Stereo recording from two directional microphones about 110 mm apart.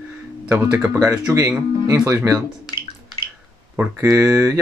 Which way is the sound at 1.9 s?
30° right (ahead or behind).